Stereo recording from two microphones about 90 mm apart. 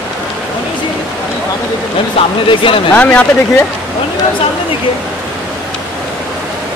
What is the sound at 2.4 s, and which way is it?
Speech, 75° left (ahead or behind).